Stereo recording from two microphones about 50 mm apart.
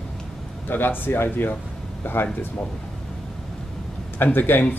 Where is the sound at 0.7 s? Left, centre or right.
Left.